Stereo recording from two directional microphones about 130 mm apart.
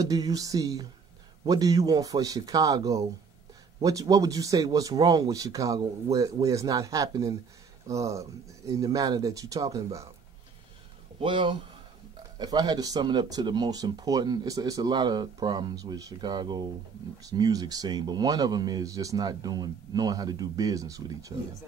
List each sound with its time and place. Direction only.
0.0 s speech: 30° right (ahead or behind)
11.1 s speech: 40° right (ahead or behind)